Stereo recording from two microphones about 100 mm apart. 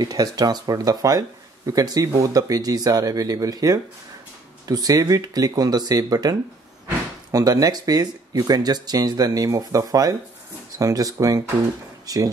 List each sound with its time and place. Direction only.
0.0 s speech: 40° right (ahead or behind)